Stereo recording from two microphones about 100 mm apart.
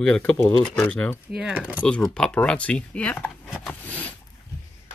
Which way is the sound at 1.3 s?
10° right (ahead or behind).